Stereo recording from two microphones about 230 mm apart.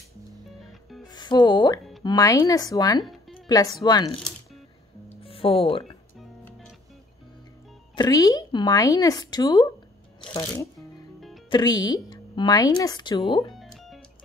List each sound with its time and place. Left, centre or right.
0.7 s music: centre
1.0 s music: centre
2.0 s a woman's voice: centre
5.1 s music: left
6.1 s music: centre
7.9 s a woman's voice: centre
11.5 s a woman's voice: centre
13.6 s music: centre